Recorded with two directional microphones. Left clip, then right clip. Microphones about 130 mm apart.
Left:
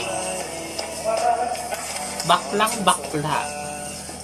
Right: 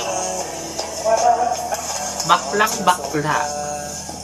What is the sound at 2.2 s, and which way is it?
Speech, 20° left (ahead or behind).